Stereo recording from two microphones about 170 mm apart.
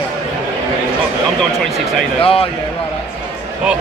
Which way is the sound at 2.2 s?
35° left (ahead or behind).